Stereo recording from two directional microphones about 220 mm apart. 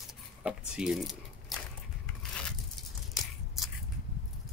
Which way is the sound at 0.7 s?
Centre (ahead or behind).